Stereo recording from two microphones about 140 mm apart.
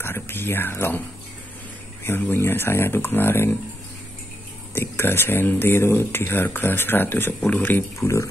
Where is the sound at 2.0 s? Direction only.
15° left (ahead or behind).